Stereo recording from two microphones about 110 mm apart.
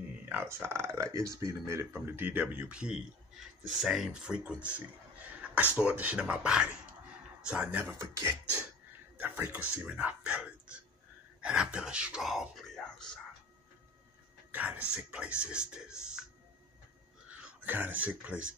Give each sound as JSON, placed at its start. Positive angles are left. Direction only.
{"t": 0.2, "sound": "speech", "side_deg": -20}
{"t": 7.8, "sound": "speech", "side_deg": -25}
{"t": 9.2, "sound": "speech", "side_deg": -15}
{"t": 14.5, "sound": "speech", "side_deg": -15}
{"t": 17.3, "sound": "speech", "side_deg": -15}